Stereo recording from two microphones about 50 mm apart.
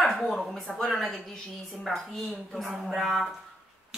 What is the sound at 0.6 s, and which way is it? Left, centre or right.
Speech, centre.